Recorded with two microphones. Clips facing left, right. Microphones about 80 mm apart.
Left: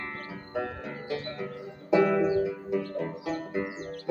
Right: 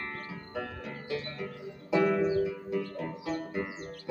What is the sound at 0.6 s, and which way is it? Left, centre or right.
Music, left.